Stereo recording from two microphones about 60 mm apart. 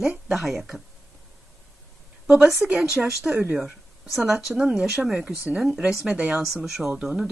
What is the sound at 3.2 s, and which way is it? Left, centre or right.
Speech, right.